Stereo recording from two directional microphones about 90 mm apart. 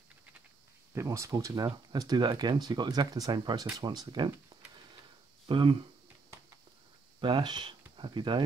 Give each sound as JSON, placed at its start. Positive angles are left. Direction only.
{"t": 0.9, "sound": "speech", "side_deg": -35}
{"t": 5.5, "sound": "speech", "side_deg": -70}
{"t": 7.2, "sound": "speech", "side_deg": -60}